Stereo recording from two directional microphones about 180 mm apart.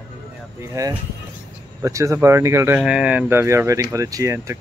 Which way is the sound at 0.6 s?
15° right (ahead or behind).